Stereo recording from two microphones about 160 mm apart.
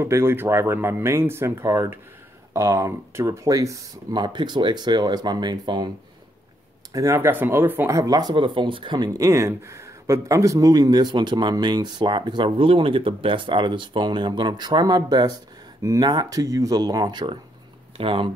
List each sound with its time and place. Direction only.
0.0 s speech: 15° right (ahead or behind)
6.9 s speech: 20° right (ahead or behind); by 18.3 s 35° right (ahead or behind)